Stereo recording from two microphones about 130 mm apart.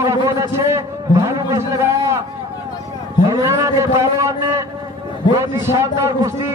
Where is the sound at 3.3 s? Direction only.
25° right (ahead or behind).